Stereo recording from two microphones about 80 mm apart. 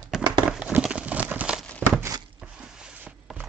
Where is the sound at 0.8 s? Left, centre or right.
Centre.